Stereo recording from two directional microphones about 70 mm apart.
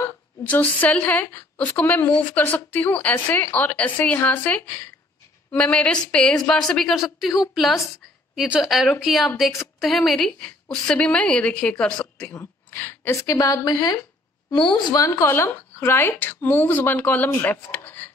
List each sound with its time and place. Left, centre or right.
0.4 s a woman's voice: left
12.7 s a sound: left
13.1 s speech: left
13.7 s speech: left
14.5 s a woman's voice: left
15.0 s speech: left